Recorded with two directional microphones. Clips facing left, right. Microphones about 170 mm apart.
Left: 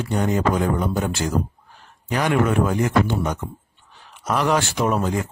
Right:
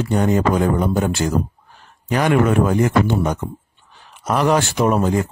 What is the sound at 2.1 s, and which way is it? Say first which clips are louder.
A man's voice: right 4 dB; 50° right (ahead or behind).